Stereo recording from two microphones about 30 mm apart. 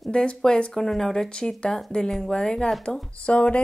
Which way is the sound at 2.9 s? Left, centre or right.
Left.